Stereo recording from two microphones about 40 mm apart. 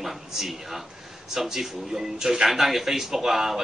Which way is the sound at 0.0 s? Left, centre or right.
Centre.